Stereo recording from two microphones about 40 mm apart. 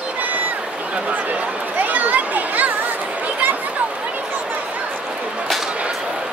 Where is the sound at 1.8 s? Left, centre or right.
Right.